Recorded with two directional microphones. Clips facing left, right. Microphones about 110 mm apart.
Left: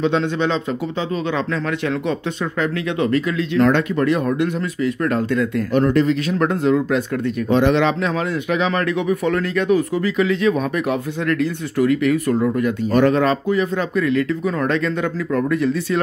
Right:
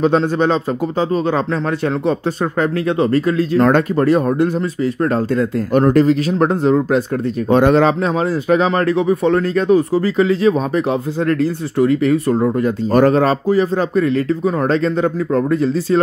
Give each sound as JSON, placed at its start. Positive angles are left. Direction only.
{"t": 0.0, "sound": "speech", "side_deg": -40}
{"t": 2.6, "sound": "speech", "side_deg": -35}
{"t": 7.4, "sound": "speech", "side_deg": -45}